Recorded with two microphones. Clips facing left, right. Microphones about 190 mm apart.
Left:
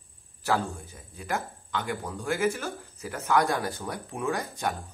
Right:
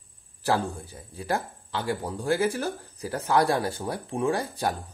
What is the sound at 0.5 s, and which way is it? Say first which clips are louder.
Speech: right 2 dB; 35° right (ahead or behind).